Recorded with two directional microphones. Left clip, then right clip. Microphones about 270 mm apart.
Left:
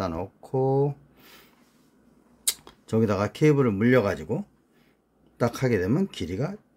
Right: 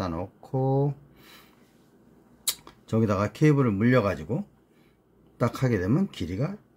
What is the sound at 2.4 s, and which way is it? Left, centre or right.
Speech, centre.